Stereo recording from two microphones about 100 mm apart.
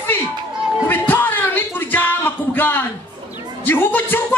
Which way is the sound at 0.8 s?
20° left (ahead or behind).